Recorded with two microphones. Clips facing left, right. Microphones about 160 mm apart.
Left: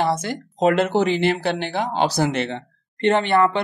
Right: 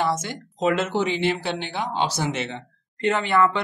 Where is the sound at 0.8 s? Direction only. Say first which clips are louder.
Left 4 dB; 45° left (ahead or behind).